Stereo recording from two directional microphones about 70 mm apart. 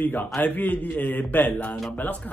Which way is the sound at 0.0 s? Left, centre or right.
Left.